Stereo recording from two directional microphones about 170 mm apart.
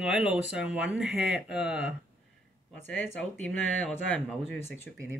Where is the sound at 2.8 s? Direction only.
10° left (ahead or behind).